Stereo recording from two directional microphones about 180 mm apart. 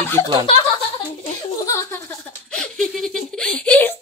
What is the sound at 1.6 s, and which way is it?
Speech, 15° left (ahead or behind).